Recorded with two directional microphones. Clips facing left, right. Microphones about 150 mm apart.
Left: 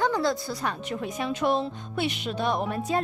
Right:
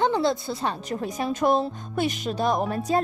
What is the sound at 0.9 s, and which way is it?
Speech, 40° right (ahead or behind).